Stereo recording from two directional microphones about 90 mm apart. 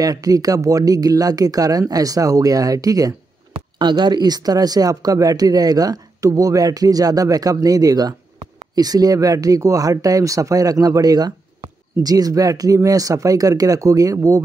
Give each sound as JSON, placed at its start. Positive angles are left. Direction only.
{"t": 0.0, "sound": "speech", "side_deg": -45}
{"t": 3.7, "sound": "speech", "side_deg": -60}